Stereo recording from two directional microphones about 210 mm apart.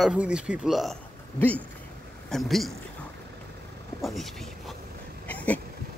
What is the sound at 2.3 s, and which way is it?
Speech, centre (ahead or behind).